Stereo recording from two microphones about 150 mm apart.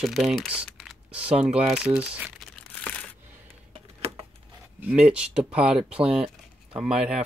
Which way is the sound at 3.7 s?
40° right (ahead or behind).